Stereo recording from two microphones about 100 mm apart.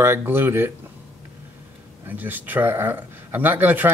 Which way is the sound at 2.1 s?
20° right (ahead or behind).